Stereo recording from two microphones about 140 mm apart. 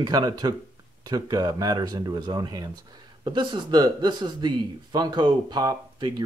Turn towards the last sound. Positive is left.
turn(degrees=-30)  # may be behind; listen again after turning